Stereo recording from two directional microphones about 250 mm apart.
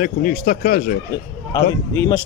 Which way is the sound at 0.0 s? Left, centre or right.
Left.